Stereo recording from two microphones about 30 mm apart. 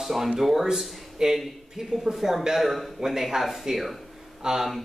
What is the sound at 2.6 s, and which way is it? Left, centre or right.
Speech, centre.